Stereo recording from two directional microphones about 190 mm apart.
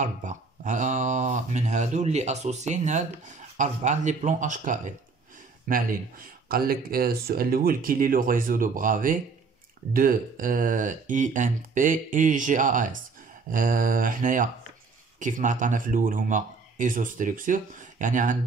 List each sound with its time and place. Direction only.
0.0 s speech: 40° right (ahead or behind)